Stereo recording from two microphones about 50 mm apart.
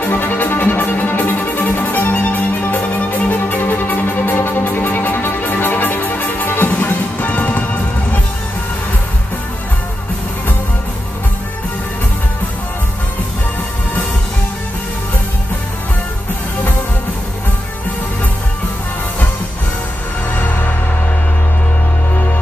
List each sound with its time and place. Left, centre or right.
0.0 s music: left
20.3 s music: left